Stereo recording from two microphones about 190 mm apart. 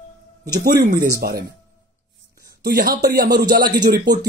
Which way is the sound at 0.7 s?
45° right (ahead or behind).